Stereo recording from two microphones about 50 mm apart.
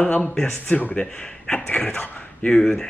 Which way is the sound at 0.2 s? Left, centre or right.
Centre.